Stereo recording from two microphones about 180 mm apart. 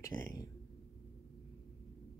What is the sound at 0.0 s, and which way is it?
Speech, 20° left (ahead or behind).